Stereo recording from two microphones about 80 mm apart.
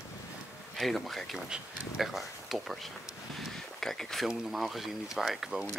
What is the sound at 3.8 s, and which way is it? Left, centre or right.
Speech, centre.